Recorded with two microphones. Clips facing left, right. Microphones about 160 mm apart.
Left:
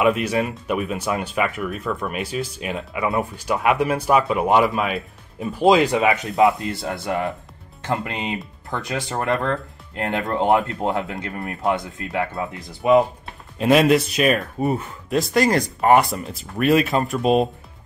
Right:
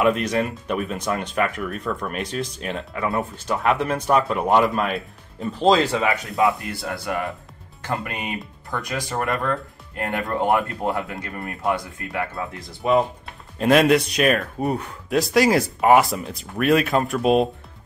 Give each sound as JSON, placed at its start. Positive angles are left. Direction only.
{"t": 0.0, "sound": "speech", "side_deg": 5}
{"t": 13.6, "sound": "speech", "side_deg": 0}